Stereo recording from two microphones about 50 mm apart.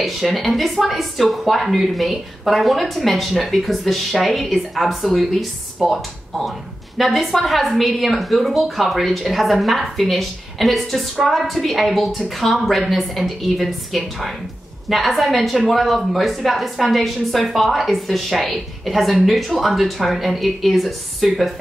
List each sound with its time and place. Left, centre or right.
0.0 s a woman's voice: centre